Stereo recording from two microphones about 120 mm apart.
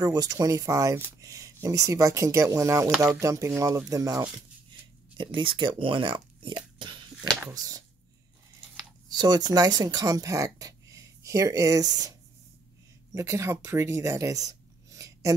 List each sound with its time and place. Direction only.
0.0 s speech: 30° right (ahead or behind)
5.1 s speech: 40° right (ahead or behind)
7.5 s speech: 30° right (ahead or behind)
9.1 s speech: 35° right (ahead or behind)
14.5 s a sound: 25° right (ahead or behind)